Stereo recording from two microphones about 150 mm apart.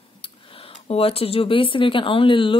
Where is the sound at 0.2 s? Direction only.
40° left (ahead or behind).